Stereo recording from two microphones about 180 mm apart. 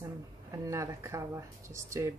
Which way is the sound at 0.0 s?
15° right (ahead or behind).